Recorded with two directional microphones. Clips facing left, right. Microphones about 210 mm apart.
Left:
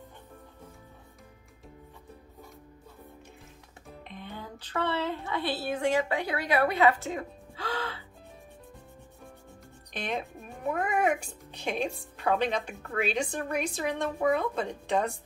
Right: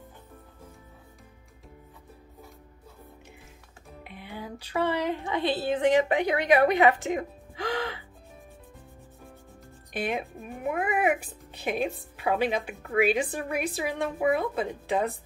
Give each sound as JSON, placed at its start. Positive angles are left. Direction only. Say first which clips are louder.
{"t": 4.0, "sound": "a woman's voice", "louder": "right 2 dB", "side_deg": -10}
{"t": 9.9, "sound": "a woman's voice", "louder": "right 3 dB", "side_deg": -5}